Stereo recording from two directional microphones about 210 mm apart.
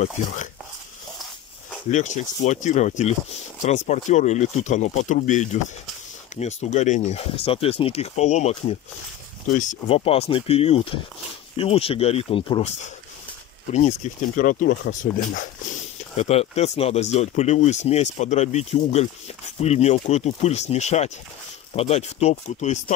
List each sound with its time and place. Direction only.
1.9 s speech: 35° left (ahead or behind)
16.2 s speech: 30° left (ahead or behind)